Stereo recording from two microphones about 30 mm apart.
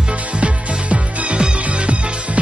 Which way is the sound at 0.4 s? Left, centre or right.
Right.